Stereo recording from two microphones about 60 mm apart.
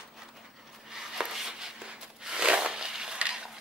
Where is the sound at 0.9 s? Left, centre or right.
Centre.